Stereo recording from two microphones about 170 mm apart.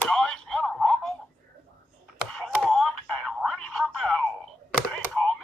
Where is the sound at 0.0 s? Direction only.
5° left (ahead or behind).